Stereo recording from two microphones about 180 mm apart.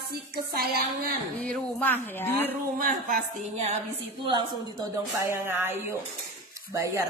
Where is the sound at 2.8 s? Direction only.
50° right (ahead or behind).